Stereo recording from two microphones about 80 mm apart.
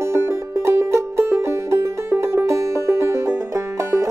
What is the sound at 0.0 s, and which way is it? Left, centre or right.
Music, right.